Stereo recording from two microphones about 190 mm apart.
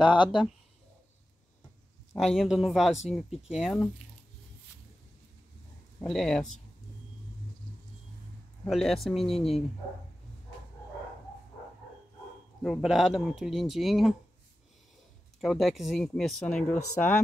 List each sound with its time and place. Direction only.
0.0 s speech: 25° left (ahead or behind)
2.2 s speech: centre (ahead or behind)
5.9 s speech: centre (ahead or behind)
8.6 s speech: centre (ahead or behind)
12.6 s speech: centre (ahead or behind)
15.4 s speech: centre (ahead or behind)